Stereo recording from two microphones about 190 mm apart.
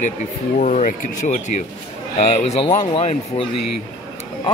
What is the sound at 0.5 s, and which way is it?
Speech, 40° left (ahead or behind).